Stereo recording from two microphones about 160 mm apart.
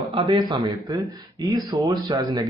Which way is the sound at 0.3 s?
25° right (ahead or behind).